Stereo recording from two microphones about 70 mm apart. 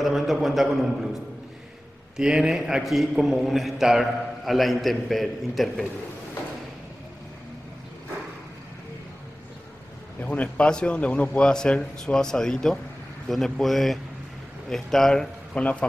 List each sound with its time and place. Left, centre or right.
0.0 s a man's voice: centre
2.1 s a man's voice: centre
10.2 s a man's voice: centre
15.5 s speech: centre